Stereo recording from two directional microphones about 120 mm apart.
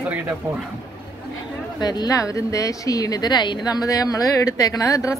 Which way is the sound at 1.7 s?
35° left (ahead or behind).